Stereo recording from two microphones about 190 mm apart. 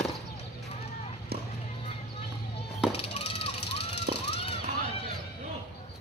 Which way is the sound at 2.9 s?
30° left (ahead or behind).